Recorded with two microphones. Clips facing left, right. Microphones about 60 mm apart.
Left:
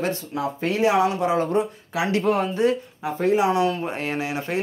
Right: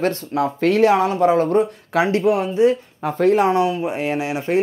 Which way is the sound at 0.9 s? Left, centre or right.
Right.